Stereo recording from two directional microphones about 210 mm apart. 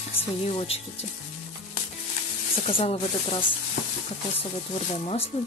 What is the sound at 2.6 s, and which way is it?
Speech, 25° left (ahead or behind).